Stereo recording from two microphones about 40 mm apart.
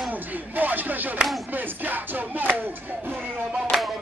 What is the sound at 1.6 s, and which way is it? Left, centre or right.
Music, right.